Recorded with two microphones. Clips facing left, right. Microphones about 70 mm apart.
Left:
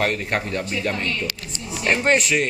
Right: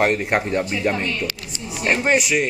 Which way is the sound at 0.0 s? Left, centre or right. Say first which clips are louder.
Right 4 dB; centre.